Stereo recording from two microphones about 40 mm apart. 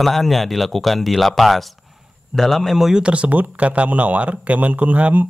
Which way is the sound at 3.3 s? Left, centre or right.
Right.